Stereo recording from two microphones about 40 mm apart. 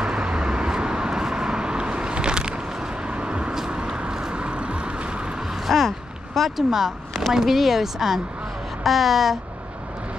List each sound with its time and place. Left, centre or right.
0.0 s vehicle: right
3.5 s vehicle: centre
5.5 s a sound: centre
6.5 s speech: centre